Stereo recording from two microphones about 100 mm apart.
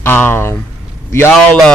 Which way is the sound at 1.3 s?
10° left (ahead or behind).